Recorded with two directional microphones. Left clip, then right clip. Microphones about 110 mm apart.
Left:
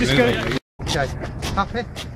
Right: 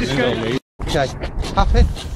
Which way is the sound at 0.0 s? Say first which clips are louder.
Left 2 dB; 45° left (ahead or behind).